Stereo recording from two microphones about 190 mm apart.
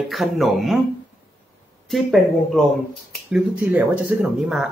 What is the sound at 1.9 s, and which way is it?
Speech, centre (ahead or behind).